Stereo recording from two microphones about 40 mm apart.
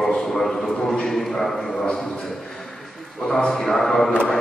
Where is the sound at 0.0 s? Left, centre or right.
Centre.